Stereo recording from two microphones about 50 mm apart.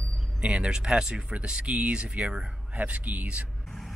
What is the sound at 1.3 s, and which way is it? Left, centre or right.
Speech, right.